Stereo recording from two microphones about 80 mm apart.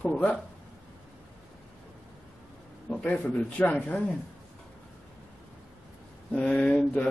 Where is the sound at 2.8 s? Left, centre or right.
Centre.